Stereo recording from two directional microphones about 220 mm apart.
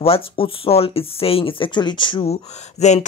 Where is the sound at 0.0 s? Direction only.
25° left (ahead or behind).